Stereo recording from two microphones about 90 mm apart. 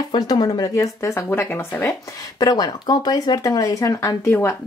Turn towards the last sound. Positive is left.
turn(degrees=30)  # may be behind; listen again after turning